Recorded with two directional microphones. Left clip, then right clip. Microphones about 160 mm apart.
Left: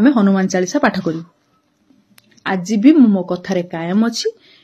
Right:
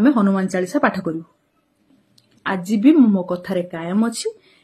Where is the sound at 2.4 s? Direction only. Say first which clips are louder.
Left 3 dB; 15° right (ahead or behind).